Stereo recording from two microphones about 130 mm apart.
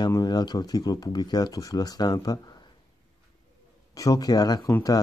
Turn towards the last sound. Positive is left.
turn(degrees=30)  # may be behind; listen again after turning